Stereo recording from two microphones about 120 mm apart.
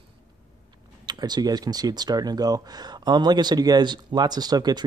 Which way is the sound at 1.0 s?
35° right (ahead or behind).